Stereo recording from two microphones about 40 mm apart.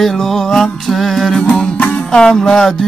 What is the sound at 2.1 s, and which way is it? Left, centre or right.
Music, centre.